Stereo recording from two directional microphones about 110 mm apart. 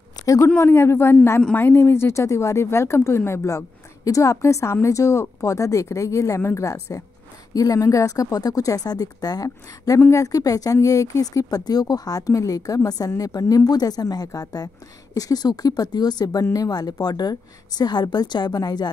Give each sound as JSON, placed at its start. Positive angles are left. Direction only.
{"t": 0.2, "sound": "speech", "side_deg": 30}